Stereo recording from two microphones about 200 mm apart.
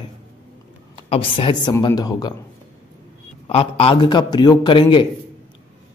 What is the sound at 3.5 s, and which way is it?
Speech, 30° left (ahead or behind).